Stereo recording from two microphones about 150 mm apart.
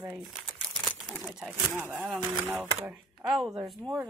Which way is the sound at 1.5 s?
15° right (ahead or behind).